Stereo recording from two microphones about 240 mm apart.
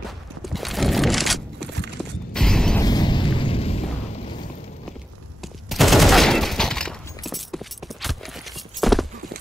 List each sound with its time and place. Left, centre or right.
0.5 s a sound: centre
2.3 s mechanisms: centre
2.8 s explosion: centre
5.4 s fusillade: centre